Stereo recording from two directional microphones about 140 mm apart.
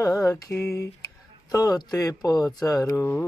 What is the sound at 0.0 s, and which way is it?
Mantra, 20° left (ahead or behind).